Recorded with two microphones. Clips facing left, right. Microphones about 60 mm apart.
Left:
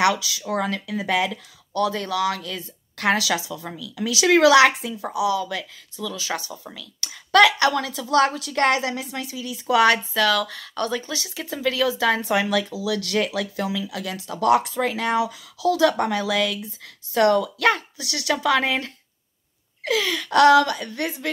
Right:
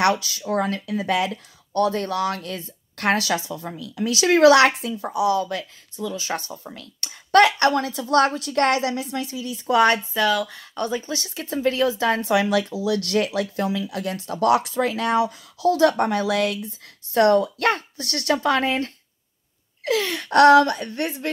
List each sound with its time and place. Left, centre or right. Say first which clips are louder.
0.0 s speech: even; right
5.9 s speech: right 1 dB; right
10.1 s speech: even; centre
11.1 s speech: right 1 dB; right
12.7 s speech: right 2 dB; right
19.9 s speech: even; right